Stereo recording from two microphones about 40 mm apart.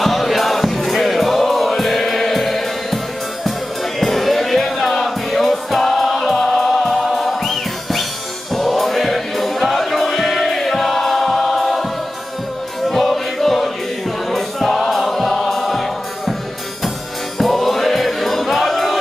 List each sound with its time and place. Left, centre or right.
0.0 s music: centre
4.0 s music: centre
12.8 s music: centre
17.4 s music: centre